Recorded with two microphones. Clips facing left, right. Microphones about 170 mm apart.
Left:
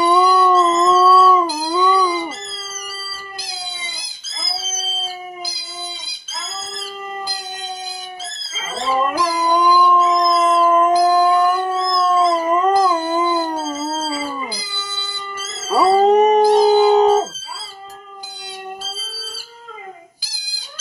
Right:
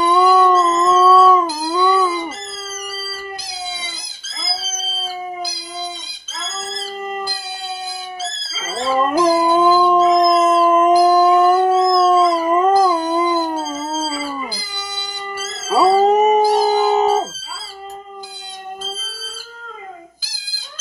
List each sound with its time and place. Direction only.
0.0 s howl: centre (ahead or behind)
8.3 s dog: 15° left (ahead or behind)
9.7 s howl: 35° right (ahead or behind)
10.3 s howl: 25° right (ahead or behind); by 14.5 s centre (ahead or behind)
15.7 s cat: centre (ahead or behind)